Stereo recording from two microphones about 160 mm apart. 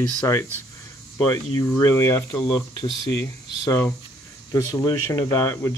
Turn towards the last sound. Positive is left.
turn(degrees=15)  # may be behind; listen again after turning